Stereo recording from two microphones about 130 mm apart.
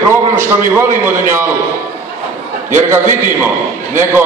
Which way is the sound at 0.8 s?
20° right (ahead or behind).